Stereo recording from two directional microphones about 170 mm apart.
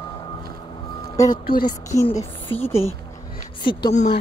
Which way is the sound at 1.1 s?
20° left (ahead or behind).